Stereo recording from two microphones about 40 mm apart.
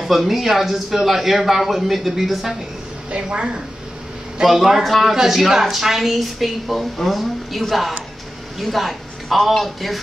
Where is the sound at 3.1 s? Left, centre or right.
Right.